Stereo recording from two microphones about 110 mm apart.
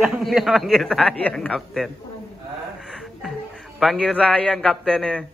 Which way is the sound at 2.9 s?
Centre (ahead or behind).